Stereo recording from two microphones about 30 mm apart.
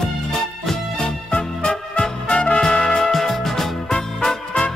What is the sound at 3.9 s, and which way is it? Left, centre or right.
Music, left.